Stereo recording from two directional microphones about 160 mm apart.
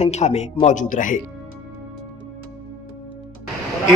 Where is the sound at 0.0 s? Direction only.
40° left (ahead or behind).